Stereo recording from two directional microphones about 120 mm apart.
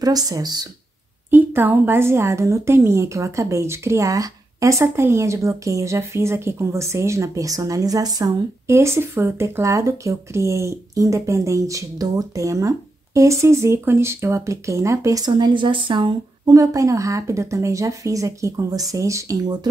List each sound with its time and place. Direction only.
0.0 s speech: 30° right (ahead or behind)
1.3 s a woman's voice: 15° right (ahead or behind); by 16.5 s 40° right (ahead or behind)
16.5 s a woman's voice: 25° right (ahead or behind)